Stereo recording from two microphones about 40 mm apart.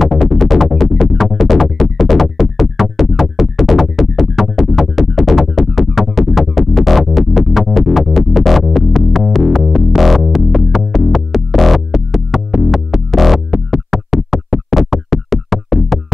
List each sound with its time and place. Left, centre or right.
0.4 s music: centre